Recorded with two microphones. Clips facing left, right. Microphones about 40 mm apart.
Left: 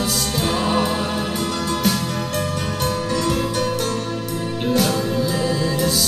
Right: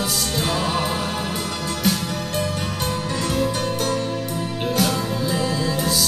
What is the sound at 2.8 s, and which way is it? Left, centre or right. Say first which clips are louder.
Music: left 5 dB; right.